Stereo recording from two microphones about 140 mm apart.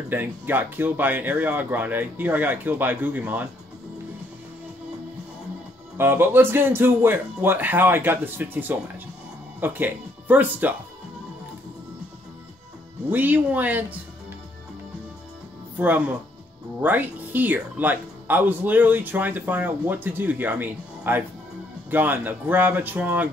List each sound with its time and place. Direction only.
0.1 s speech: 15° right (ahead or behind)
5.9 s speech: 15° right (ahead or behind)
13.1 s speech: 15° right (ahead or behind)
16.8 s speech: 15° right (ahead or behind)